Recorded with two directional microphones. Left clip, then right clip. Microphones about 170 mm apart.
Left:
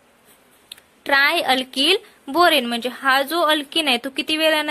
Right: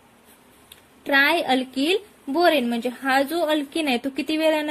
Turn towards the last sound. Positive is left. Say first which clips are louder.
# left 3 dB
turn(degrees=35)  # may be behind; listen again after turning